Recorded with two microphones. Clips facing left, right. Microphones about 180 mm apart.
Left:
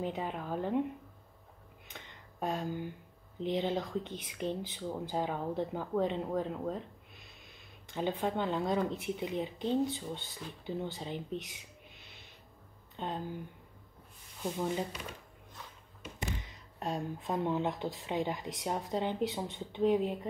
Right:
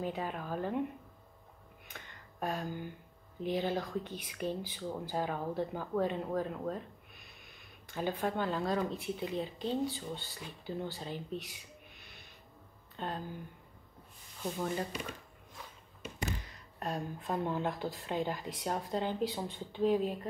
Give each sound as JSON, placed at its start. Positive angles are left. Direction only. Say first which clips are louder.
{"t": 0.0, "sound": "a woman's voice", "louder": "left 1 dB", "side_deg": 20}
{"t": 1.9, "sound": "a sound", "louder": "left 1 dB", "side_deg": 20}
{"t": 3.3, "sound": "speech", "louder": "left 1 dB", "side_deg": 20}
{"t": 7.9, "sound": "speech", "louder": "left 1 dB", "side_deg": 20}
{"t": 12.9, "sound": "speech", "louder": "left 1 dB", "side_deg": 20}
{"t": 14.4, "sound": "a woman's voice", "louder": "left 1 dB", "side_deg": 15}
{"t": 16.4, "sound": "speech", "louder": "left 1 dB", "side_deg": 20}